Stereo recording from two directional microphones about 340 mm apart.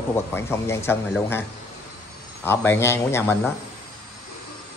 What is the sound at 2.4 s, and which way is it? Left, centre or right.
A man's voice, centre.